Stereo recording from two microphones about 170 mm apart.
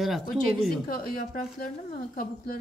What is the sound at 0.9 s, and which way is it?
A woman's voice, 60° left (ahead or behind).